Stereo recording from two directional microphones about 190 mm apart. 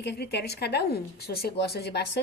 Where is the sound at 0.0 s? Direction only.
60° left (ahead or behind).